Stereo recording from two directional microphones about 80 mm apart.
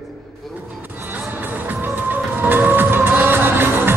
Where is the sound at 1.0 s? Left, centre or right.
Right.